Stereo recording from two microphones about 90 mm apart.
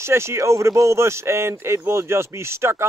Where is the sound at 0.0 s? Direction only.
30° right (ahead or behind).